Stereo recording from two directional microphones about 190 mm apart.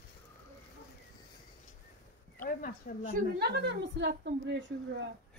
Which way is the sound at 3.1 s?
55° right (ahead or behind).